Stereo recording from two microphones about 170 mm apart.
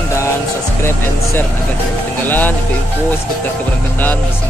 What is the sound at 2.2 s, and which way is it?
Speech, 10° left (ahead or behind).